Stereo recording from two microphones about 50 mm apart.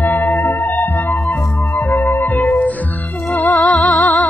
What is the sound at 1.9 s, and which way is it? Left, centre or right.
Music, left.